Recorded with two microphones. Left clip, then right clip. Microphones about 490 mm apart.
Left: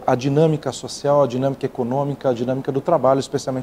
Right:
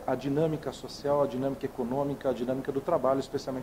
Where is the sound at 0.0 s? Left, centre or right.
Left.